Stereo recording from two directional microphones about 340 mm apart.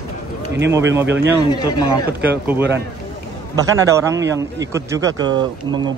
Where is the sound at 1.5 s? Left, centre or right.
Centre.